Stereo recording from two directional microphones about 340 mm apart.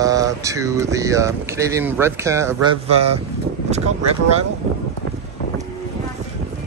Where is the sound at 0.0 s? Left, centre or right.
Centre.